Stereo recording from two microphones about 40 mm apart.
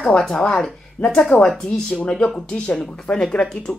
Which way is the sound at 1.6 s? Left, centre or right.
Left.